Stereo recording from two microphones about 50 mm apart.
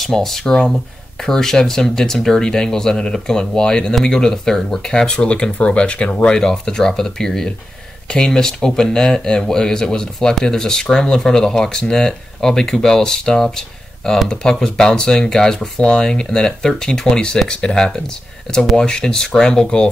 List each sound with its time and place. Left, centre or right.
0.0 s speech: centre; by 6.2 s left
6.2 s speech: centre